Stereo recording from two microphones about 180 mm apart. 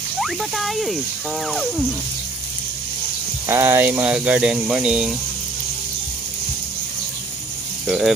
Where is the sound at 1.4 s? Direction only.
Centre (ahead or behind).